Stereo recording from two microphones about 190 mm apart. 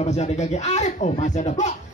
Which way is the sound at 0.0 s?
35° left (ahead or behind).